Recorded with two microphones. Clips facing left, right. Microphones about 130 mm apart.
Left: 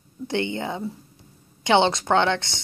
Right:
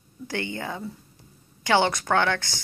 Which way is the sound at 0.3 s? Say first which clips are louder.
Left 5 dB; 20° left (ahead or behind).